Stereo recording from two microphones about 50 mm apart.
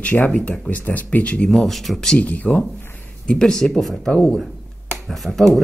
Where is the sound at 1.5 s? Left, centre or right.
Centre.